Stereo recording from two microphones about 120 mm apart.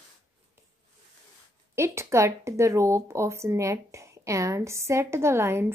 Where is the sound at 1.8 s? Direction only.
25° right (ahead or behind).